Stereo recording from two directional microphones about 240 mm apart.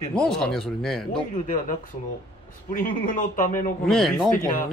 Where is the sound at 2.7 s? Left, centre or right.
Left.